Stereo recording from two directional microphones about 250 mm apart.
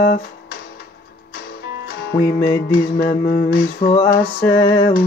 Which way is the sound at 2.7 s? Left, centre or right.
Left.